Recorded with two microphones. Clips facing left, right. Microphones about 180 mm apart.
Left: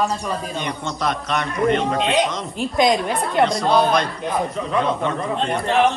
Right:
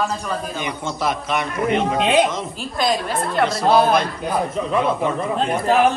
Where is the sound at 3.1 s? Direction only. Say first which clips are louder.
Left 1 dB; 5° right (ahead or behind).